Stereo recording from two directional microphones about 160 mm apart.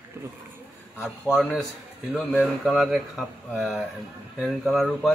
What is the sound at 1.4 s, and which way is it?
A man's voice, 5° left (ahead or behind).